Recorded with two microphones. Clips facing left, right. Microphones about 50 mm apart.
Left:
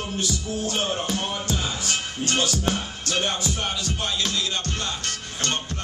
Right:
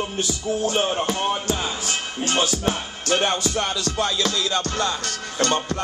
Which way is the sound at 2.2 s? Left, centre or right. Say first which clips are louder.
Right 2 dB; centre.